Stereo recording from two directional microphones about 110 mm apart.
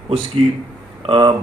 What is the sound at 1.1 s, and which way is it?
Speech, 55° right (ahead or behind).